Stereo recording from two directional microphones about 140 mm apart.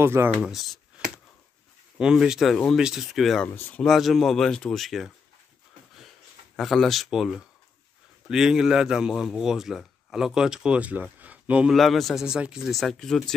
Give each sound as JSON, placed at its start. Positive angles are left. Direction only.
{"t": 0.0, "sound": "speech", "side_deg": -15}
{"t": 0.4, "sound": "a man's voice", "side_deg": 0}
{"t": 3.4, "sound": "speech", "side_deg": 15}
{"t": 3.8, "sound": "a man's voice", "side_deg": 0}
{"t": 6.5, "sound": "a man's voice", "side_deg": 0}